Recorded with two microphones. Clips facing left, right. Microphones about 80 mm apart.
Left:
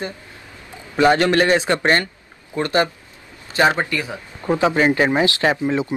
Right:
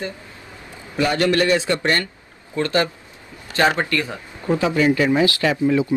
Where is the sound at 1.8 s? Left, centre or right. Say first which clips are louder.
Left 3 dB; left.